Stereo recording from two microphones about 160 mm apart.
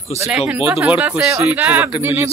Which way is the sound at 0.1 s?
45° left (ahead or behind).